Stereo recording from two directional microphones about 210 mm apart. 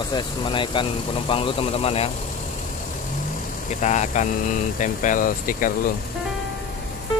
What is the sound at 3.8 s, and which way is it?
Speech, 35° left (ahead or behind).